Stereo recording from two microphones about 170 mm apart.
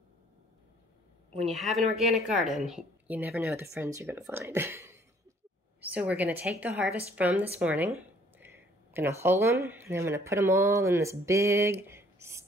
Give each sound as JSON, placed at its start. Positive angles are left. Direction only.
{"t": 1.4, "sound": "a woman's voice", "side_deg": 0}